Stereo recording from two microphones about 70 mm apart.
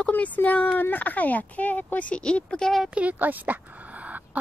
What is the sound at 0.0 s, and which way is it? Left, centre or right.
Speech, left.